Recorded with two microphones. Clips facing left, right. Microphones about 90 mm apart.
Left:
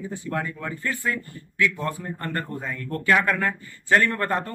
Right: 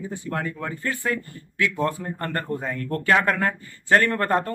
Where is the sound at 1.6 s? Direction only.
35° right (ahead or behind).